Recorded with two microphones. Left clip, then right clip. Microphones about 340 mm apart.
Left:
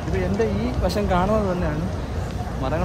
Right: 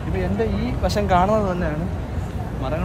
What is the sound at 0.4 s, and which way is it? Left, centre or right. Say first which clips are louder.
Speech: even; centre.